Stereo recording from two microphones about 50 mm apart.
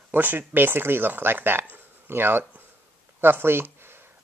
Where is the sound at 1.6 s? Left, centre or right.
Right.